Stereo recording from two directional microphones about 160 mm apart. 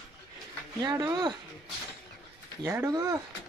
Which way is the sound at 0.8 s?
25° right (ahead or behind).